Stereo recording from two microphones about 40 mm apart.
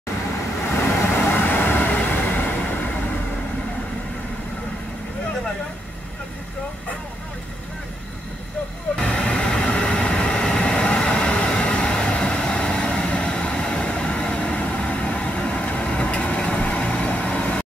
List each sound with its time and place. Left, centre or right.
0.7 s vehicle: left
8.9 s vehicle: left